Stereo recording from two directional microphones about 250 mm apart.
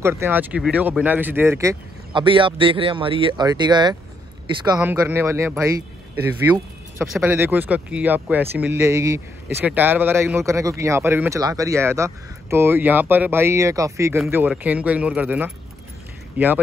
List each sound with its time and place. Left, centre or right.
0.0 s speech: centre